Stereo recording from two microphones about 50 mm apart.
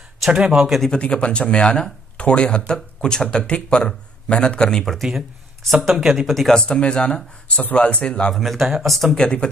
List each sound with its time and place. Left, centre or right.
0.3 s speech: centre
0.9 s speech: left
4.8 s speech: centre
6.2 s speech: centre
6.6 s speech: centre
8.4 s speech: centre
9.1 s speech: centre